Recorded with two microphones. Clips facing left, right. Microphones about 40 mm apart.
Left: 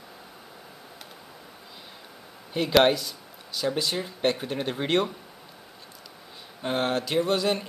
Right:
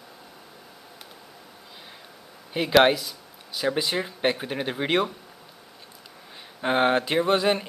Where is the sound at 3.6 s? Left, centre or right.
Centre.